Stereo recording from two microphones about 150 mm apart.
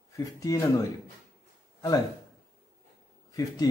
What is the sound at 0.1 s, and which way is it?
Speech, 20° left (ahead or behind).